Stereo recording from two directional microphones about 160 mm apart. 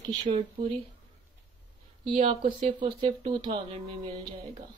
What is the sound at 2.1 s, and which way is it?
Speech, 40° right (ahead or behind).